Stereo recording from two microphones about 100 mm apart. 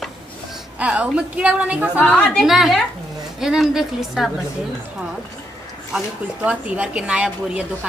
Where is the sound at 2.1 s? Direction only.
10° left (ahead or behind).